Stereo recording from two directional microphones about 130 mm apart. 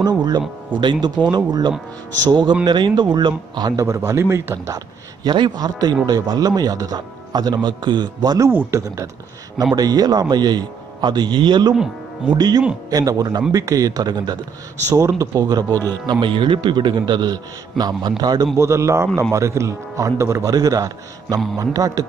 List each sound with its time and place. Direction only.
0.0 s a man's voice: 30° right (ahead or behind)
8.5 s a man's voice: 15° right (ahead or behind)